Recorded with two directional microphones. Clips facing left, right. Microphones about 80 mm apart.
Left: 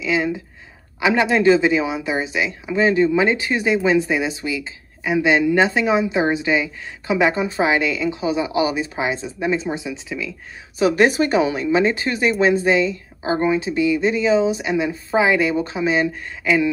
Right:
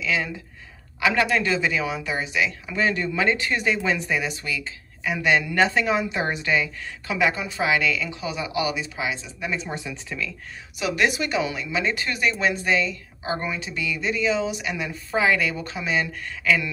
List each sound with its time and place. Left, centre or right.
0.0 s speech: left
10.8 s speech: left